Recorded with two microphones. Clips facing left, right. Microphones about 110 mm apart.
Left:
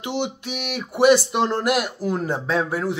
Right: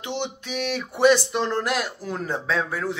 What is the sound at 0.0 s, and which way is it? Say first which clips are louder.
Speech: left 4 dB; 10° left (ahead or behind).